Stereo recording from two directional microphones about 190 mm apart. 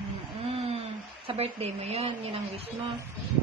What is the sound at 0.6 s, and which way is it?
Speech, 30° right (ahead or behind).